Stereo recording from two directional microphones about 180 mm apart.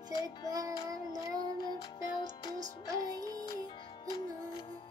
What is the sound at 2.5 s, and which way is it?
Music, 20° right (ahead or behind).